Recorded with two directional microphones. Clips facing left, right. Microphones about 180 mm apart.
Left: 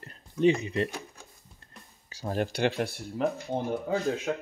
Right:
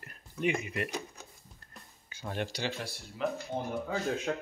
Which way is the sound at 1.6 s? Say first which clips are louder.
Left 3 dB; 35° left (ahead or behind).